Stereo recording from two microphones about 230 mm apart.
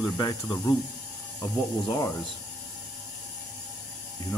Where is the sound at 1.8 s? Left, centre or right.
Centre.